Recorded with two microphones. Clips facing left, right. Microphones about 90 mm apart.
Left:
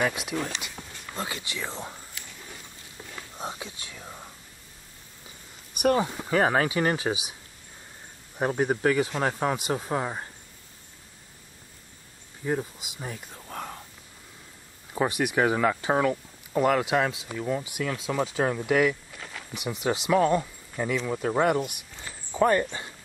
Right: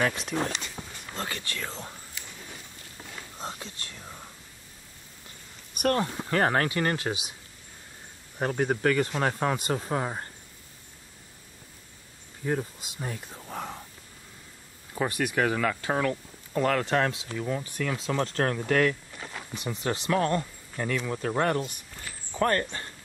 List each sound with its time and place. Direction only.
0.0 s speech: 5° left (ahead or behind)
0.8 s a sound: 10° right (ahead or behind)
1.1 s speech: 15° left (ahead or behind)
3.3 s speech: 10° left (ahead or behind)
5.8 s speech: 10° left (ahead or behind)
8.4 s speech: 15° left (ahead or behind)
12.4 s speech: 5° left (ahead or behind)
15.0 s speech: 15° left (ahead or behind)
19.1 s a sound: 10° right (ahead or behind)
19.5 s speech: 15° left (ahead or behind)